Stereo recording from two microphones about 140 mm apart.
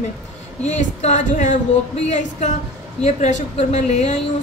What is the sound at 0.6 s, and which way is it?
A woman's voice, 55° left (ahead or behind).